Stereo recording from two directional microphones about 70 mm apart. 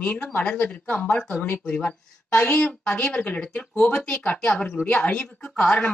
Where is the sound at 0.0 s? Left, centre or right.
Left.